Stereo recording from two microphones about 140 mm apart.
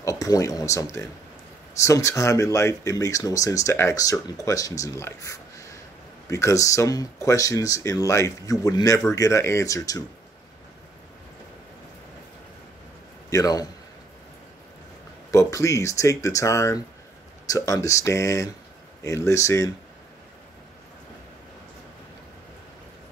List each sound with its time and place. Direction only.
0.0 s speech: 25° left (ahead or behind)
13.3 s speech: 25° left (ahead or behind)
15.3 s speech: 20° left (ahead or behind)